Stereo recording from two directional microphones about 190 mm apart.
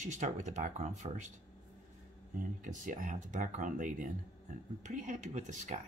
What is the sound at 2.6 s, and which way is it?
Speech, 40° right (ahead or behind).